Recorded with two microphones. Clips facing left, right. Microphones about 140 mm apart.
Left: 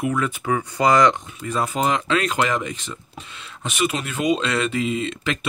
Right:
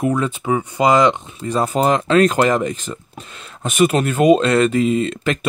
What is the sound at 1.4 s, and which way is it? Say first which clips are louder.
Speech: right 5 dB; 35° right (ahead or behind).